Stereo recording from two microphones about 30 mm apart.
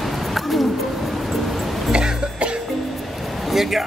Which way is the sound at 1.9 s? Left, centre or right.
Right.